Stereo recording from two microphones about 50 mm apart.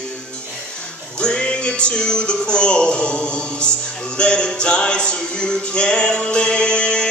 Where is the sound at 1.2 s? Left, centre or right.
Centre.